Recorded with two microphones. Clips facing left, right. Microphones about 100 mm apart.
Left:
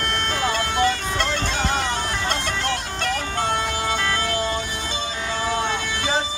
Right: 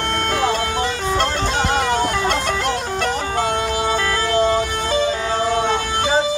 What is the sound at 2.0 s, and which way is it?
Music, 45° right (ahead or behind).